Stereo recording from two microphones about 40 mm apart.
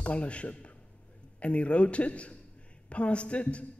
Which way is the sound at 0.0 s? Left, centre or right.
Left.